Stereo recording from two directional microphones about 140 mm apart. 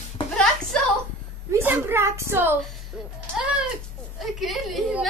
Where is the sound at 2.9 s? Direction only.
5° right (ahead or behind).